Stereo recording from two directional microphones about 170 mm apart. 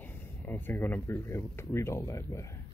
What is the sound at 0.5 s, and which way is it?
Speech, 10° left (ahead or behind).